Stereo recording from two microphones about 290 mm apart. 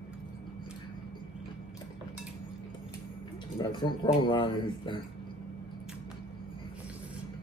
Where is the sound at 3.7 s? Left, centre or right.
Centre.